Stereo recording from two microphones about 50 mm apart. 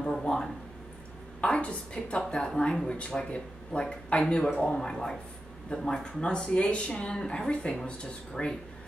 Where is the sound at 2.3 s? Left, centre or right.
Centre.